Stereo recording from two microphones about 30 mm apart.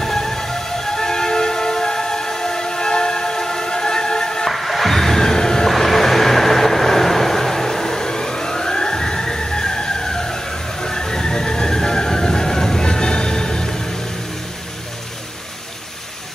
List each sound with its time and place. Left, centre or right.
0.0 s music: centre
4.5 s music: centre
5.7 s vehicle: centre
12.8 s music: left